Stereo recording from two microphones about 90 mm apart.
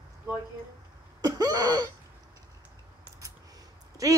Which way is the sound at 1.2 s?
40° right (ahead or behind).